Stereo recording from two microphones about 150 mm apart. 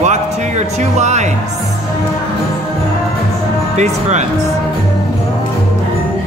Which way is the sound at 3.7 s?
50° right (ahead or behind).